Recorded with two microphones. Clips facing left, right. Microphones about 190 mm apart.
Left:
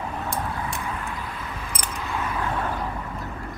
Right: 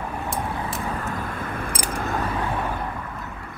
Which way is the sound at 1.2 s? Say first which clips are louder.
Right 5 dB; 50° right (ahead or behind).